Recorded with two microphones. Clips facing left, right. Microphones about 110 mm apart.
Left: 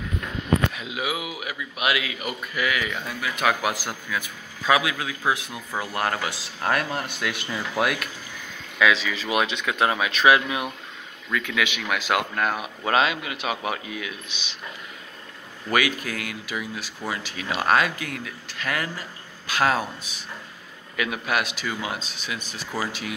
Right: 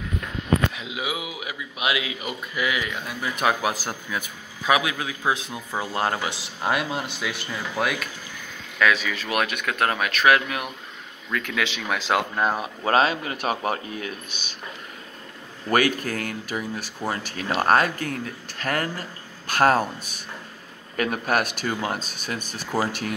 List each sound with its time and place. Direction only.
0.7 s speech: 20° right (ahead or behind)
3.3 s speech: 20° right (ahead or behind); by 10.6 s 15° left (ahead or behind)
11.2 s speech: centre (ahead or behind)
12.4 s speech: 30° right (ahead or behind)
15.7 s speech: 45° right (ahead or behind)
20.9 s speech: 45° right (ahead or behind)